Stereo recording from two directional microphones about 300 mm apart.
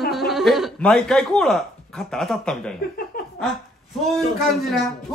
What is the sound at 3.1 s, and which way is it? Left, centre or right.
Laughter, left.